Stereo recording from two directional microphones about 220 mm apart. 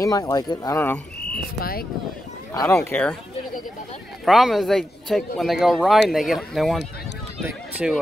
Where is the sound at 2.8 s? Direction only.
5° left (ahead or behind).